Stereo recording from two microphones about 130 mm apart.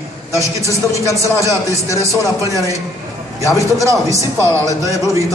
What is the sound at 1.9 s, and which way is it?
Speech, 25° right (ahead or behind).